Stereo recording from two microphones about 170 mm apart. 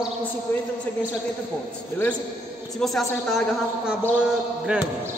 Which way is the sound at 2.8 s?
Centre (ahead or behind).